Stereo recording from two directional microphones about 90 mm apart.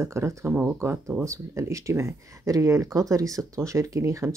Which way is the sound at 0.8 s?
30° right (ahead or behind).